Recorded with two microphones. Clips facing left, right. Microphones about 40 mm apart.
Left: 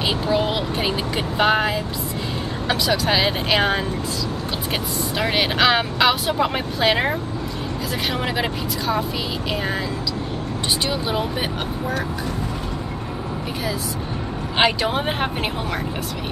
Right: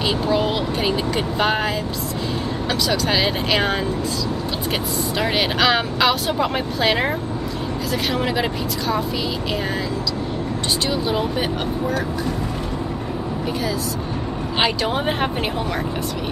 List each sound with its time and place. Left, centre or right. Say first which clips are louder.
0.0 s speech: right 1 dB; centre
2.9 s speech: left 1 dB; centre
5.2 s speech: left 1 dB; centre
10.9 s speech: right 2 dB; centre
14.6 s speech: left 2 dB; centre
15.0 s speech: right 1 dB; centre